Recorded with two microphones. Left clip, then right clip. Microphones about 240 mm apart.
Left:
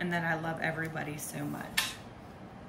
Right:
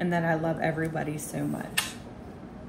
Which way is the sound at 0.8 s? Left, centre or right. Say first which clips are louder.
Right 6 dB; right.